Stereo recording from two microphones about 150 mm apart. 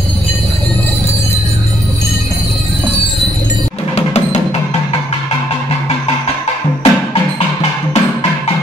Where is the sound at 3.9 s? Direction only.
45° left (ahead or behind).